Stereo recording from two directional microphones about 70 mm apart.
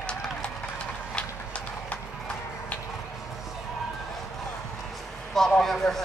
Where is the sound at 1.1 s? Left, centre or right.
Centre.